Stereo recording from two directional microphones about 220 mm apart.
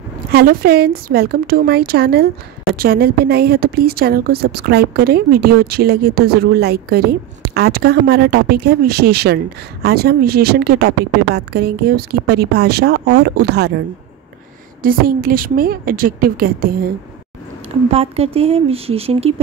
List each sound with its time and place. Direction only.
0.3 s speech: 45° right (ahead or behind)
14.8 s a woman's voice: 40° right (ahead or behind)
17.9 s speech: 25° right (ahead or behind)